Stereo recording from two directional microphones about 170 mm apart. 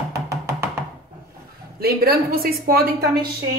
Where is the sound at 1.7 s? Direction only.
65° right (ahead or behind).